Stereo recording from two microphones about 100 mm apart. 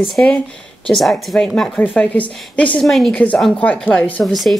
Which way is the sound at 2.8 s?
5° left (ahead or behind).